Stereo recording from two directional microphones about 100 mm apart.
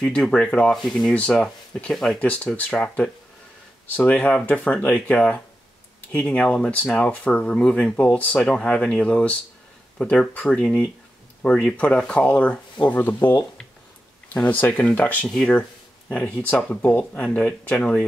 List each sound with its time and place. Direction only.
0.0 s speech: 10° left (ahead or behind)